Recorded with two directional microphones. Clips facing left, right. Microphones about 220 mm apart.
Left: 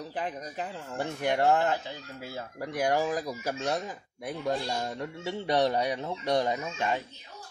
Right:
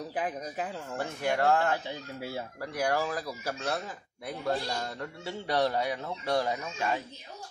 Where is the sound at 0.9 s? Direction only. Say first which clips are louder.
Left 2 dB; 20° left (ahead or behind).